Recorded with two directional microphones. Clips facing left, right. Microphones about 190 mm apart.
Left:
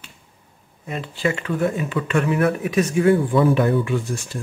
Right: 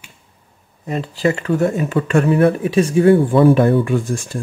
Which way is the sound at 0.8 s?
40° right (ahead or behind).